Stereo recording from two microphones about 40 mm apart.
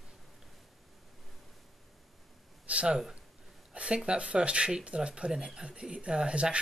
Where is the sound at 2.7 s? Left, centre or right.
Right.